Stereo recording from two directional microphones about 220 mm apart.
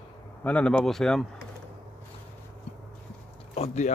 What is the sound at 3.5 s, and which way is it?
Speech, 30° left (ahead or behind).